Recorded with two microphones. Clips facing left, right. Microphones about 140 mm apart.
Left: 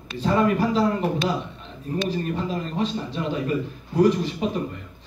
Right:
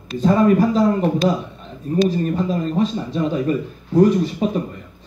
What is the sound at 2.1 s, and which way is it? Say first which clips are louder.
Speech: right 6 dB; 40° right (ahead or behind).